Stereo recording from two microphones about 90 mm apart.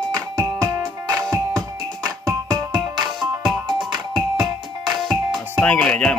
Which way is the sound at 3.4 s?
65° right (ahead or behind).